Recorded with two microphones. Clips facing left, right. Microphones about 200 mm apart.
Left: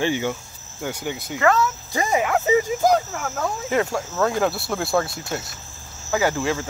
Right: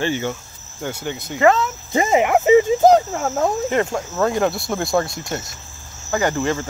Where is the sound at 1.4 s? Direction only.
20° right (ahead or behind).